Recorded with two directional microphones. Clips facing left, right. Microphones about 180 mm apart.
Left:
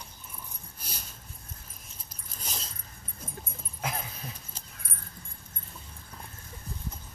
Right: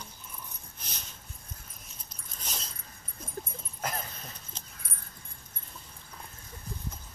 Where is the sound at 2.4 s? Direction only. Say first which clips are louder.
Left 1 dB; centre (ahead or behind).